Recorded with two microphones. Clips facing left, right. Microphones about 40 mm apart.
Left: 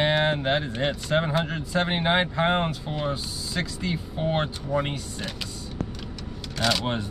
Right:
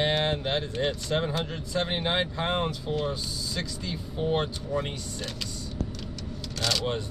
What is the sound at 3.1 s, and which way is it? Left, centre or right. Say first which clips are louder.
Speech: left 2 dB; left.